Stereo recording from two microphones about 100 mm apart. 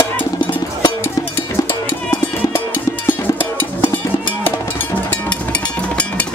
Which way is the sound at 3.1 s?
20° left (ahead or behind).